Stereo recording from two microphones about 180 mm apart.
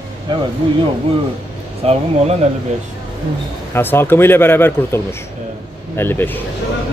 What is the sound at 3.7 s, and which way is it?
Speech, 10° left (ahead or behind).